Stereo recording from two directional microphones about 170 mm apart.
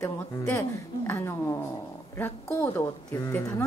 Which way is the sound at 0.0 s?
15° left (ahead or behind).